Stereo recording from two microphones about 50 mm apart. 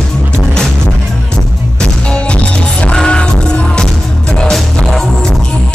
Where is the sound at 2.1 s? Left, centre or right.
Left.